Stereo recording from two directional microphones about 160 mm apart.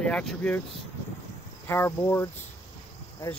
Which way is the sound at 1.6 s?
15° left (ahead or behind).